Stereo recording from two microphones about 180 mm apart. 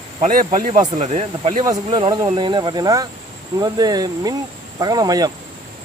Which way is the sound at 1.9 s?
25° right (ahead or behind).